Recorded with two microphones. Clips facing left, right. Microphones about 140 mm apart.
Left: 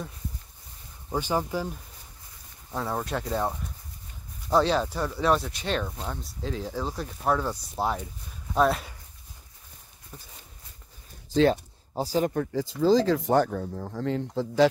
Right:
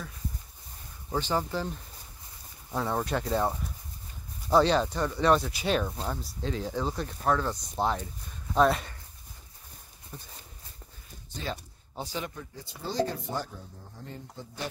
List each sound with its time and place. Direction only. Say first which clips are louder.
1.1 s speech: left 2 dB; 10° left (ahead or behind)
2.7 s speech: right 1 dB; centre (ahead or behind)
10.1 s speech: right 2 dB; centre (ahead or behind)
11.2 s a sound: left 16 dB; 90° left
11.9 s speech: left 10 dB; 35° left (ahead or behind)
12.4 s speech: left 17 dB; 90° left